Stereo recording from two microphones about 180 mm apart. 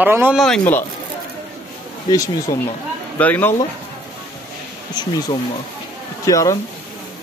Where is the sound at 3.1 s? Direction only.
10° left (ahead or behind).